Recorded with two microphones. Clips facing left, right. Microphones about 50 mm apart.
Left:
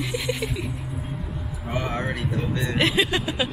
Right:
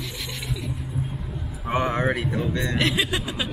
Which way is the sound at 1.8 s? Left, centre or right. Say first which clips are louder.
Right 5 dB; centre.